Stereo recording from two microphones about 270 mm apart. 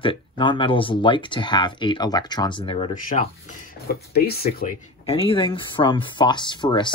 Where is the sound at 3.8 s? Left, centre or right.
Left.